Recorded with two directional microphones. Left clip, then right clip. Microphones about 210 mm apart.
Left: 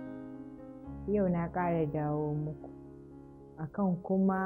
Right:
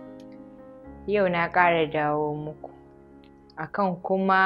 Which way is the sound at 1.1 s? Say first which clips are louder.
Right 11 dB; 15° right (ahead or behind).